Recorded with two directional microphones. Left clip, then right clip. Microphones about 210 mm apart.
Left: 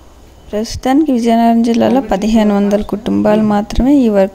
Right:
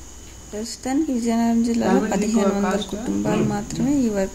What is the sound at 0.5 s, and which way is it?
Speech, 40° left (ahead or behind).